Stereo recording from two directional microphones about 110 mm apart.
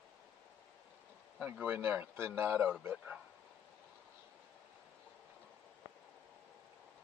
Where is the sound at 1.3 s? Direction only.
5° right (ahead or behind).